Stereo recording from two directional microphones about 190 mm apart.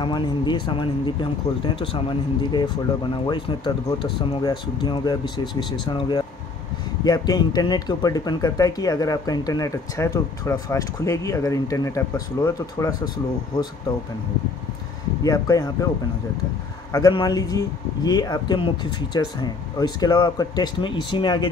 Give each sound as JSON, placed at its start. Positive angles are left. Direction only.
{"t": 0.0, "sound": "speech", "side_deg": 25}
{"t": 15.2, "sound": "speech", "side_deg": 20}
{"t": 16.9, "sound": "speech", "side_deg": 20}